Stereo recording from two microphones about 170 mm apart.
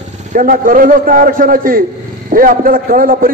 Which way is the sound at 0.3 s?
55° right (ahead or behind).